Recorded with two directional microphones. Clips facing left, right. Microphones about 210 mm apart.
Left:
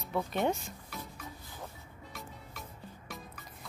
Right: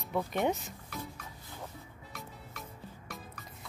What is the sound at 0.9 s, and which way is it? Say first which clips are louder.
Music: right 3 dB; centre (ahead or behind).